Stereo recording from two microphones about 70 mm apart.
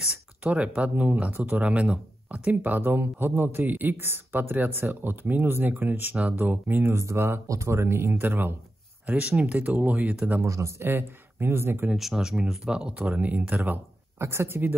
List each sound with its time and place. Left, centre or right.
0.4 s speech: centre
6.9 s speech: right
10.4 s speech: right
10.9 s speech: right
11.9 s speech: centre
13.0 s speech: right
13.7 s speech: right